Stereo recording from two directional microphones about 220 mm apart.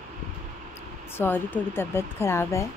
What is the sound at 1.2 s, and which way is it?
Speech, 10° left (ahead or behind).